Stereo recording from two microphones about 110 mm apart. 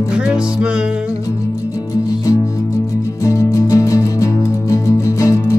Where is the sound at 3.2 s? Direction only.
30° left (ahead or behind).